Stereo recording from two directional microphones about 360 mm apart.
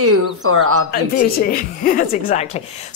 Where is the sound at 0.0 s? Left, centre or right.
Right.